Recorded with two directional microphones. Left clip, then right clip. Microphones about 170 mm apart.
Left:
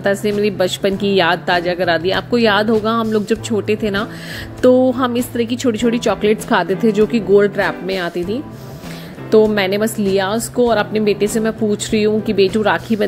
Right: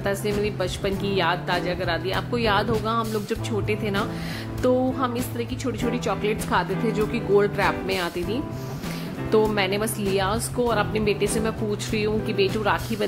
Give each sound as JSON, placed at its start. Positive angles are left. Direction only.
{"t": 0.0, "sound": "a woman's voice", "side_deg": 30}